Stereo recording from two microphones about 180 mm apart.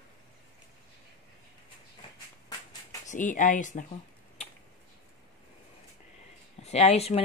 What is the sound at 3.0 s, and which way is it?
Speech, 45° left (ahead or behind).